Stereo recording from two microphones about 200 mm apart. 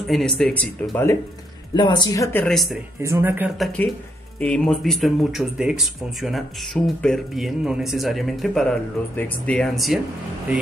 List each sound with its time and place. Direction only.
0.0 s speech: centre (ahead or behind)
1.8 s speech: 20° left (ahead or behind)
2.4 s speech: centre (ahead or behind)
3.0 s speech: 10° right (ahead or behind)